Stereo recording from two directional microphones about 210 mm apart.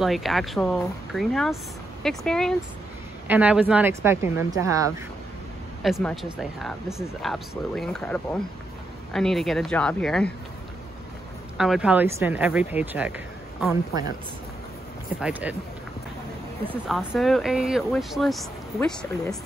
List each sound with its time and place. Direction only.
0.0 s speech: centre (ahead or behind)
5.8 s speech: centre (ahead or behind)
11.5 s speech: centre (ahead or behind)
15.1 s speech: 5° right (ahead or behind)
16.6 s speech: 5° right (ahead or behind)